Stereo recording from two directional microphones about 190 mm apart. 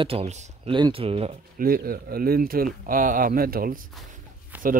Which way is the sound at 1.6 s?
50° right (ahead or behind).